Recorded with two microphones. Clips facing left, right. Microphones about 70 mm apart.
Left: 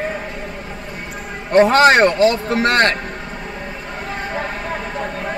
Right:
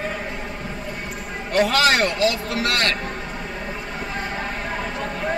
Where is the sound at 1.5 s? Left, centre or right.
Left.